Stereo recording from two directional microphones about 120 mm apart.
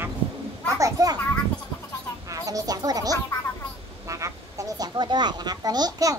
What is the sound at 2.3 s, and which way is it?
Speech, 30° right (ahead or behind).